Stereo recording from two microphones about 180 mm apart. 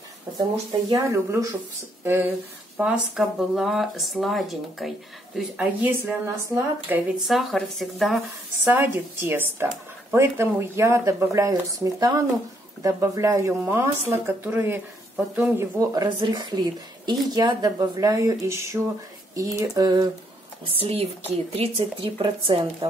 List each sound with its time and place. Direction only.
0.4 s speech: 20° right (ahead or behind)
7.2 s speech: centre (ahead or behind)
8.6 s speech: 10° right (ahead or behind)
20.7 s speech: 30° right (ahead or behind)